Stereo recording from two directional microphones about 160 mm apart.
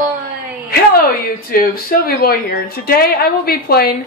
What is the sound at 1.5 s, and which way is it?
A woman's voice, 70° left (ahead or behind).